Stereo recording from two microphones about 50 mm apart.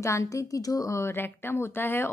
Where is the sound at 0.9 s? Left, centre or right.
Left.